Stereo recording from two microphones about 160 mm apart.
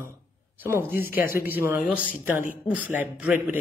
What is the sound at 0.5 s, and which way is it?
Speech, 15° right (ahead or behind).